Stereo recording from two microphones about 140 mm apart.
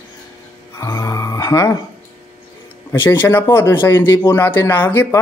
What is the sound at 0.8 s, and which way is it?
Speech, 25° left (ahead or behind).